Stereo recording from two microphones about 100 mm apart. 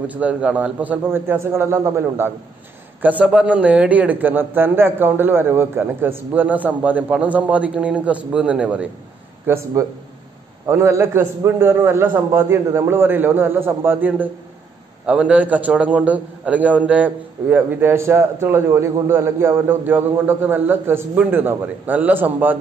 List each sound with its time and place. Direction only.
0.1 s a man's voice: 15° right (ahead or behind)
9.5 s a man's voice: 30° right (ahead or behind)